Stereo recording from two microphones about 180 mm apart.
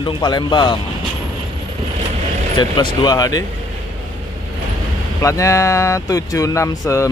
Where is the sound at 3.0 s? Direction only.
20° left (ahead or behind).